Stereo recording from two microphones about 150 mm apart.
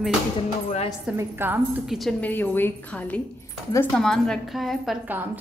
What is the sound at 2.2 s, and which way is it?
A woman's voice, 10° left (ahead or behind).